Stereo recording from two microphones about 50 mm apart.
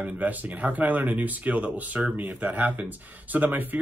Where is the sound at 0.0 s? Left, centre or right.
Right.